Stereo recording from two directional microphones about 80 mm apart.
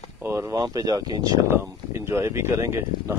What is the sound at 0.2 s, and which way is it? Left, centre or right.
Speech, right.